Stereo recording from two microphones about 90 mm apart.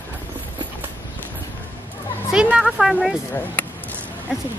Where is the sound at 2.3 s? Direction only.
10° right (ahead or behind).